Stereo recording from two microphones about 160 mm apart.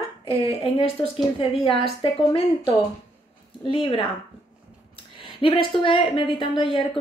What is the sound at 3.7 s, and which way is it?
Speech, 35° left (ahead or behind).